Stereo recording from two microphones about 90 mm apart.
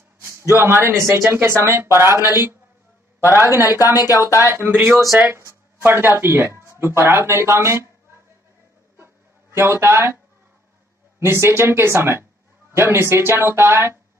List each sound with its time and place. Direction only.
0.2 s speech: 35° right (ahead or behind)
3.9 s speech: 45° left (ahead or behind)
4.4 s speech: 25° right (ahead or behind)
8.9 s a sound: 30° right (ahead or behind)
11.1 s speech: 30° right (ahead or behind)